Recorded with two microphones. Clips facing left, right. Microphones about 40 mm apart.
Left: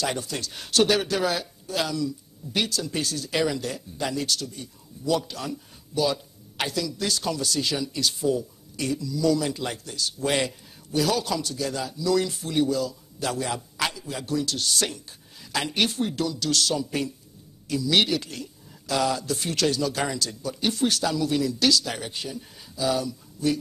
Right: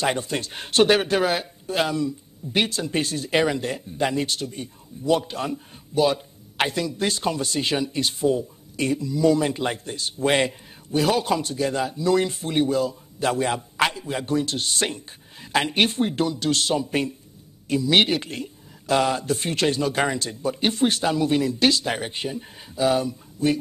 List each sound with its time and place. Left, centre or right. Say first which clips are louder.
0.0 s speech: right 4 dB; right